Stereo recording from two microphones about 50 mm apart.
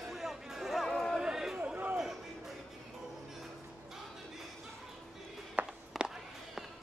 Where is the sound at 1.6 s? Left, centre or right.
Right.